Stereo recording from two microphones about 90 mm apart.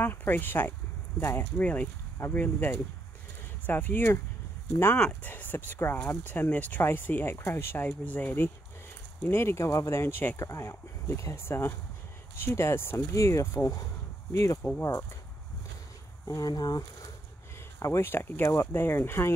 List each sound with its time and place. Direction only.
0.0 s speech: 20° left (ahead or behind)
16.3 s speech: 40° left (ahead or behind)
17.7 s speech: 35° left (ahead or behind)